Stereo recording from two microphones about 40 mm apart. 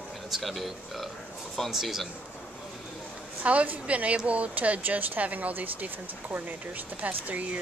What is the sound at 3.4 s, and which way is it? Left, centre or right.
Speech, right.